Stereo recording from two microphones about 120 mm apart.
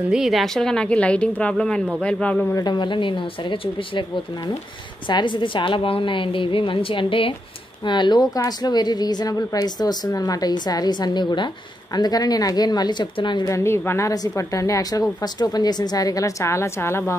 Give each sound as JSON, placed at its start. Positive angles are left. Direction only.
{"t": 0.1, "sound": "a woman's voice", "side_deg": 0}
{"t": 2.5, "sound": "a woman's voice", "side_deg": 35}
{"t": 5.1, "sound": "a woman's voice", "side_deg": 40}
{"t": 13.5, "sound": "a woman's voice", "side_deg": 25}